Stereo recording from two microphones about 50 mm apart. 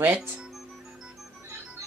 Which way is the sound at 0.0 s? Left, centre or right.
Right.